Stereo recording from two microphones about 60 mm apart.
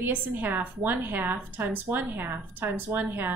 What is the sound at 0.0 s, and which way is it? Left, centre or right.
A woman's voice, right.